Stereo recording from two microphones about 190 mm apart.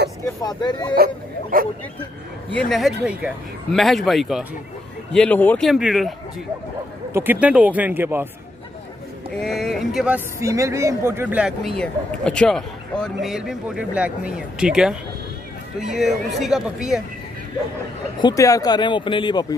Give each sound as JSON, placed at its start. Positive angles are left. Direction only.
{"t": 0.4, "sound": "speech", "side_deg": 20}
{"t": 0.9, "sound": "speech", "side_deg": -50}
{"t": 2.5, "sound": "a man's voice", "side_deg": 0}
{"t": 7.2, "sound": "speech", "side_deg": -10}
{"t": 9.4, "sound": "a man's voice", "side_deg": 0}
{"t": 18.2, "sound": "speech", "side_deg": 15}